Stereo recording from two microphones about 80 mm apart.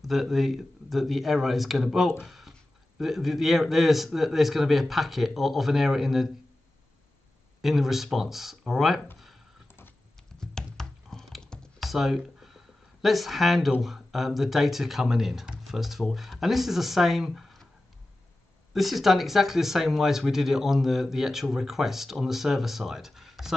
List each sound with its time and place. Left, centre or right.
0.0 s speech: centre
2.2 s a sound: centre
3.0 s speech: centre
7.6 s speech: centre
9.7 s a sound: left
10.4 s typing: centre
11.9 s speech: centre
18.7 s speech: centre